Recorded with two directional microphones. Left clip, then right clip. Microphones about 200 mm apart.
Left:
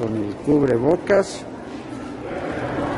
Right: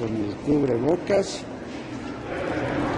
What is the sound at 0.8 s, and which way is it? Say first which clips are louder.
Speech: left 5 dB; 25° left (ahead or behind).